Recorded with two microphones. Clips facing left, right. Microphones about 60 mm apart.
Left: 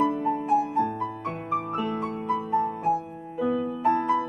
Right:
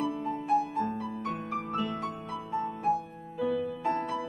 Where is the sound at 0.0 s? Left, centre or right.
Left.